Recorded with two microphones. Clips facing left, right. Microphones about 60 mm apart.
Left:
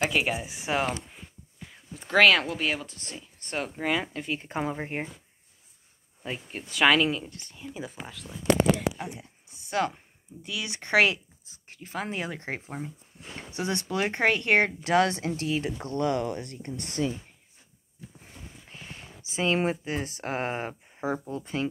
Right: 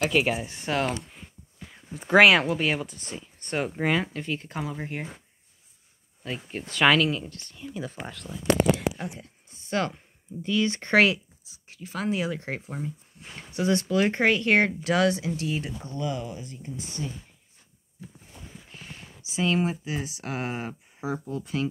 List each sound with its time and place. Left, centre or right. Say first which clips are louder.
0.1 s speech: right 3 dB; centre
1.1 s a sound: even; centre
2.0 s speech: right 3 dB; centre
3.9 s speech: right 2 dB; centre
4.4 s speech: left 3 dB; left
6.2 s speech: right 1 dB; centre
6.7 s speech: right 1 dB; centre
7.2 s speech: right 2 dB; left
7.5 s speech: right 3 dB; centre
11.4 s a sound: right 3 dB; left
12.1 s speech: right 4 dB; left
15.8 s speech: left 4 dB; left
19.2 s speech: even; left